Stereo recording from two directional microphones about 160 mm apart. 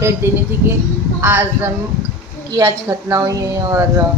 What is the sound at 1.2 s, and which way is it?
A man's voice, 10° right (ahead or behind).